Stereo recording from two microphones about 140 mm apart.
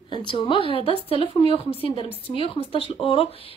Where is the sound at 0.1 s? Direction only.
35° left (ahead or behind).